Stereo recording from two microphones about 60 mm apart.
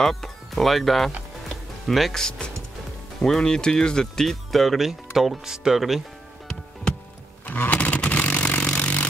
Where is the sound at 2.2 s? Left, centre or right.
Centre.